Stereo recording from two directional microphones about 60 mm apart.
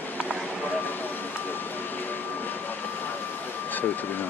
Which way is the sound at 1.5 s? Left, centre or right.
Left.